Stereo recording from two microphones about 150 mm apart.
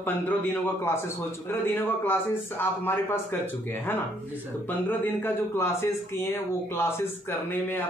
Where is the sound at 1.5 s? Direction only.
15° left (ahead or behind).